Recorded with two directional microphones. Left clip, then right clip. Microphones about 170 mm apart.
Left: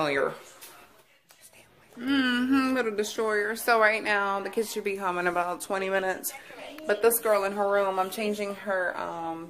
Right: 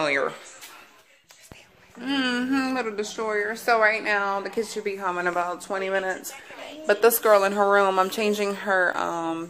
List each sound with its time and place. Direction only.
0.0 s speech: centre (ahead or behind)
2.0 s speech: 10° right (ahead or behind)
6.9 s a woman's voice: 50° right (ahead or behind)